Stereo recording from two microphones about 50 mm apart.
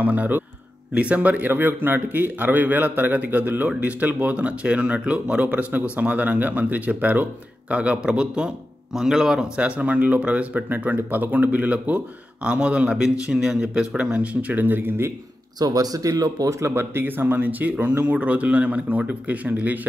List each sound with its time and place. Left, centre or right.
0.0 s a man's voice: right
1.5 s a man's voice: right
8.9 s speech: centre
9.6 s a man's voice: right
12.4 s a man's voice: right
14.5 s speech: right
16.4 s a man's voice: right